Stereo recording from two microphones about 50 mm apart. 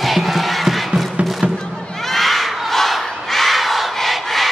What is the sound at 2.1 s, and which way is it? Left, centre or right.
Battle cry, centre.